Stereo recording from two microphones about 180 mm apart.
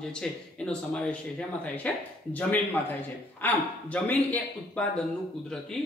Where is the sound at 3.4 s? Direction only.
10° left (ahead or behind).